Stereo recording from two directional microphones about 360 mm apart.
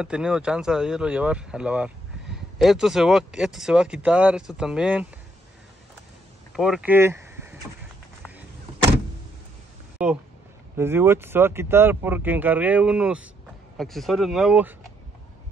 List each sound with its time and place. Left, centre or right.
0.0 s speech: centre
6.5 s vehicle: centre
10.0 s speech: centre